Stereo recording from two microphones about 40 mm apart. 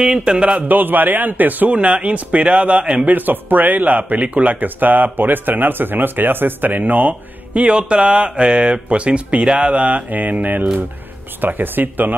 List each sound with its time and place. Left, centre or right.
0.0 s a man's voice: right
0.6 s speech: right
1.8 s speech: right
3.1 s speech: right